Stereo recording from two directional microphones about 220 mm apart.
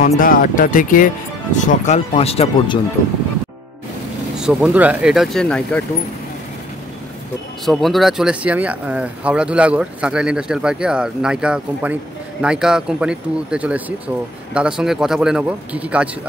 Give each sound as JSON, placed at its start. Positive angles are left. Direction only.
{"t": 0.0, "sound": "speech", "side_deg": 40}
{"t": 4.4, "sound": "speech", "side_deg": -5}
{"t": 7.6, "sound": "speech", "side_deg": 0}